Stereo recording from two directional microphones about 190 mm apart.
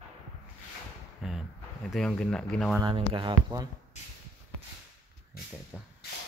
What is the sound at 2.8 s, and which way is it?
Speech, 25° right (ahead or behind).